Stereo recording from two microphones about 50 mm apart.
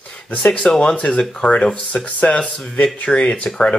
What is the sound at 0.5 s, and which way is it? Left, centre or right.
Speech, centre.